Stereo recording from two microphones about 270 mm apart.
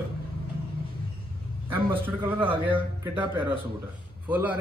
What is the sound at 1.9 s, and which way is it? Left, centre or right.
A man's voice, centre.